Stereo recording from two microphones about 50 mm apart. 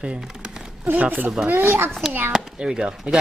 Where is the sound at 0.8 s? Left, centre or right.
Right.